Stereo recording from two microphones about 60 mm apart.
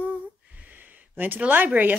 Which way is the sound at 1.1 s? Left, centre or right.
Right.